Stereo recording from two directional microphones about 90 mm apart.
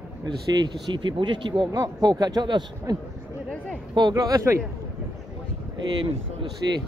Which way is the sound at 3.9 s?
50° right (ahead or behind).